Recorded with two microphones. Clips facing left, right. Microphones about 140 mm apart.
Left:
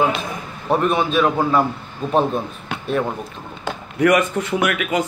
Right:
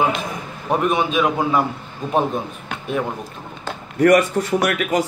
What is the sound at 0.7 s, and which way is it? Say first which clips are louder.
Speech: left 1 dB; 10° right (ahead or behind).